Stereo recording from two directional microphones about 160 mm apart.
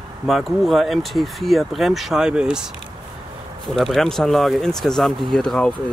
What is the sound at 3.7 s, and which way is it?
Speech, centre (ahead or behind).